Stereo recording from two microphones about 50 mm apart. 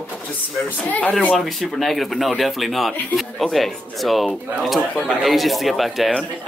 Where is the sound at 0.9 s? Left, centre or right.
Left.